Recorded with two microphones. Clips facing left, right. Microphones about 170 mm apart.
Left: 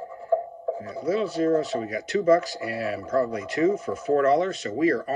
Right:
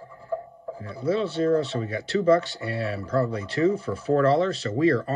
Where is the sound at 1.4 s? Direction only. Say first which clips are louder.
Even; 30° right (ahead or behind).